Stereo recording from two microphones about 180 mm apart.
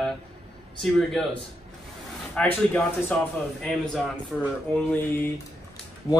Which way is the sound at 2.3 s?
5° left (ahead or behind).